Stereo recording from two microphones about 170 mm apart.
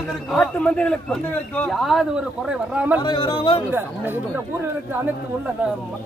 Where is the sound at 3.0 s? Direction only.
30° left (ahead or behind).